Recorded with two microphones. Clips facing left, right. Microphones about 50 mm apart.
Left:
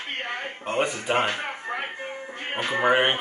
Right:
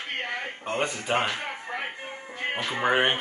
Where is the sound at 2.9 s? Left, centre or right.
Centre.